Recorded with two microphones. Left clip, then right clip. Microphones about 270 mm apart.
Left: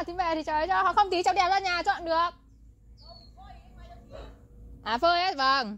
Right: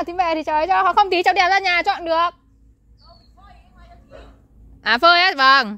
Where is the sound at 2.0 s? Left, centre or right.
Right.